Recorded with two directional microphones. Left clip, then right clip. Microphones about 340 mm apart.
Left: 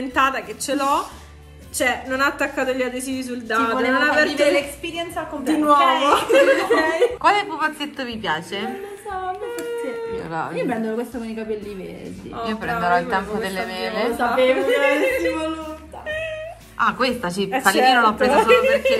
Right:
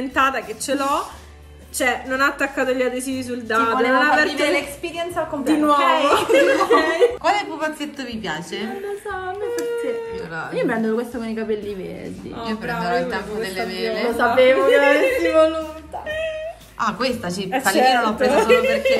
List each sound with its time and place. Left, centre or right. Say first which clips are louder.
0.0 s a woman's voice: even; centre
6.1 s a woman's voice: even; centre
10.5 s a woman's voice: right 7 dB; right
12.4 s a woman's voice: left 3 dB; centre
14.1 s a woman's voice: right 4 dB; centre
14.5 s a woman's voice: right 3 dB; centre
16.7 s a woman's voice: left 2 dB; centre